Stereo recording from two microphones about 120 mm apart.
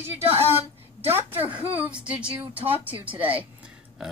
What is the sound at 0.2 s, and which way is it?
Speech, 55° right (ahead or behind).